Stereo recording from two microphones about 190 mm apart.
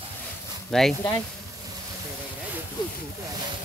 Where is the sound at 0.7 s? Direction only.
Centre (ahead or behind).